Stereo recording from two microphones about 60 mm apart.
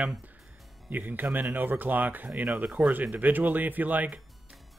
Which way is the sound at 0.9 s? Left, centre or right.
Right.